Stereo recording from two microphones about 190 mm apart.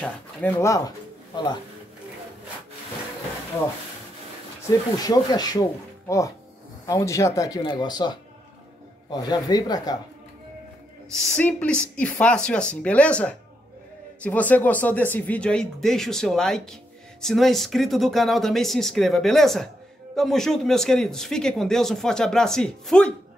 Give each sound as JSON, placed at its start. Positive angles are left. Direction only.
{"t": 0.0, "sound": "speech", "side_deg": 10}
{"t": 4.6, "sound": "speech", "side_deg": 20}
{"t": 11.1, "sound": "speech", "side_deg": 5}